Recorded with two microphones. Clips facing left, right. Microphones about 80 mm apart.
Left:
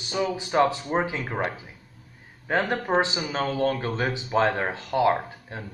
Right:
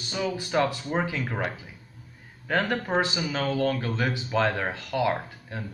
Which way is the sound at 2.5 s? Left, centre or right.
Left.